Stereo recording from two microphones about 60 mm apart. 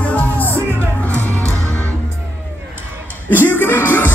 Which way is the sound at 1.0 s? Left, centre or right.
Left.